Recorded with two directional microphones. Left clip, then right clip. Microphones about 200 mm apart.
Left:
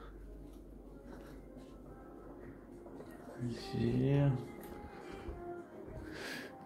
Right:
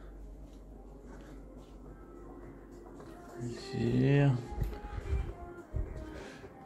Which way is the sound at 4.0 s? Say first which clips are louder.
Right 6 dB; 25° right (ahead or behind).